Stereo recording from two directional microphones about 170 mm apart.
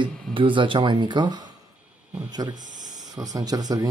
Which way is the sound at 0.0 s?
30° right (ahead or behind).